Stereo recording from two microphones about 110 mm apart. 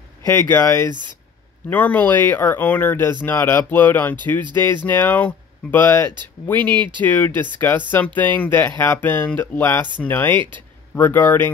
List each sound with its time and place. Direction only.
0.2 s speech: 25° left (ahead or behind)
0.8 s speech: 45° right (ahead or behind)
1.7 s speech: 15° left (ahead or behind)
6.7 s speech: 45° right (ahead or behind)
7.0 s speech: 15° left (ahead or behind)